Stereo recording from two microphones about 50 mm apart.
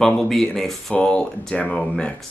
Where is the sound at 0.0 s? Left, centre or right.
Centre.